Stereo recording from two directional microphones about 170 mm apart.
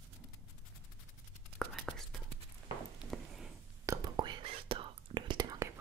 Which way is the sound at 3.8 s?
20° right (ahead or behind).